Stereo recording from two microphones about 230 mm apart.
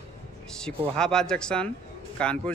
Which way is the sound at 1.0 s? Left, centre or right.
Centre.